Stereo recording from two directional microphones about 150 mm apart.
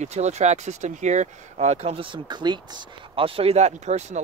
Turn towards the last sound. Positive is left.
turn(degrees=-50)  # may be behind; listen again after turning